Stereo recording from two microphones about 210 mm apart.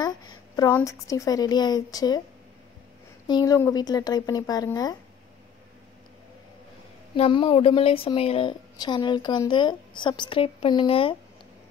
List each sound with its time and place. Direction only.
0.0 s a woman's voice: 15° left (ahead or behind)
3.3 s speech: 20° left (ahead or behind)
7.2 s a woman's voice: 25° left (ahead or behind)